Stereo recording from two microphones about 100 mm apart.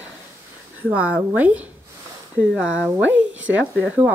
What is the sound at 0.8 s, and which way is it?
Speech, 15° right (ahead or behind).